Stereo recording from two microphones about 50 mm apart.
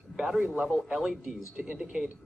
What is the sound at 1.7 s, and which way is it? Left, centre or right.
Speech, centre.